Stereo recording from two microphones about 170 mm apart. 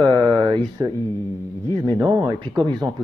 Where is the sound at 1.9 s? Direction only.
25° right (ahead or behind).